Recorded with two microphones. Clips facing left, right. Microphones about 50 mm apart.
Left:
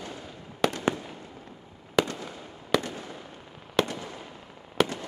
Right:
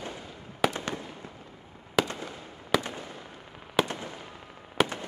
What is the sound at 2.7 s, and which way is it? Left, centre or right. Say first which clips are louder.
Fireworks: left 1 dB; centre.